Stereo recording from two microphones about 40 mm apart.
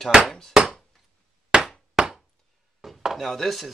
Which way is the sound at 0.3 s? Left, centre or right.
Centre.